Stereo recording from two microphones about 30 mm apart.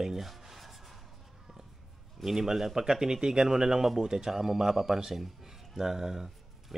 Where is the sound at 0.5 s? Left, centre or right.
Centre.